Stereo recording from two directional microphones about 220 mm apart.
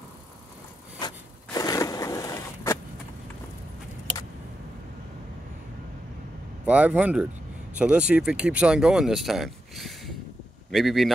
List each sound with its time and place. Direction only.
1.0 s crushing: 15° left (ahead or behind)
6.6 s speech: 5° right (ahead or behind)